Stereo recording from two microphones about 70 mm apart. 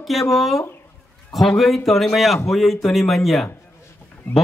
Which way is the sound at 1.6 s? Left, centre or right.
Centre.